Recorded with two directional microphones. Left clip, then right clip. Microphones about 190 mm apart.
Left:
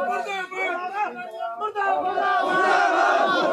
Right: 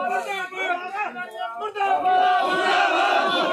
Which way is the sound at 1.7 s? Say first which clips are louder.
Right 4 dB; 15° left (ahead or behind).